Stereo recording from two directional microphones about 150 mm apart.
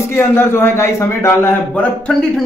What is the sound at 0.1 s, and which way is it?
A man's voice, 15° left (ahead or behind).